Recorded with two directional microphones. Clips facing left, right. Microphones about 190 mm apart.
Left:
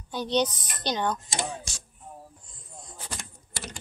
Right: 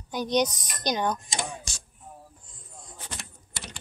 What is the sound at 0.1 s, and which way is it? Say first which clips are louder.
Speech: right 1 dB; 15° right (ahead or behind).